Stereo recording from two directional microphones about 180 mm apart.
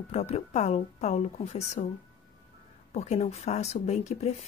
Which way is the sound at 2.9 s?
40° left (ahead or behind).